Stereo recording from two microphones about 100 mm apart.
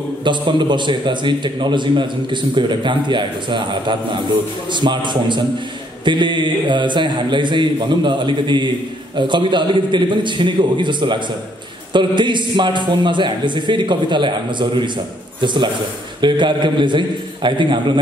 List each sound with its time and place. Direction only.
0.2 s a man's voice: 50° right (ahead or behind)